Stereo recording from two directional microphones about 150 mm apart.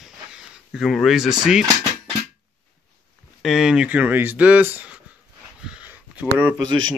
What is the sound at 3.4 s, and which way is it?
Speech, 5° right (ahead or behind).